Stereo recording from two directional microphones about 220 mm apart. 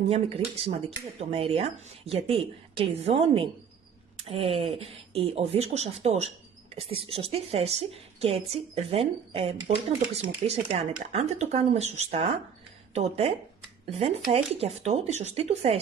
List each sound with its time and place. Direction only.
0.7 s speech: 25° right (ahead or behind)